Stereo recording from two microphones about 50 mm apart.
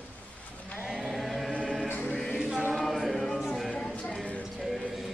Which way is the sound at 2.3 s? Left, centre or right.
Centre.